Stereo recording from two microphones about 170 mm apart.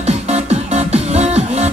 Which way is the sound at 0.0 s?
40° right (ahead or behind).